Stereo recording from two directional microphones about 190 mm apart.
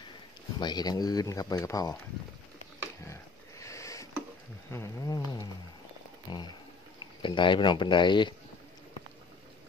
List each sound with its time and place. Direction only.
0.6 s speech: 20° left (ahead or behind)
3.1 s sniff: 15° left (ahead or behind)
4.6 s insect: 15° left (ahead or behind)
6.3 s speech: 20° left (ahead or behind)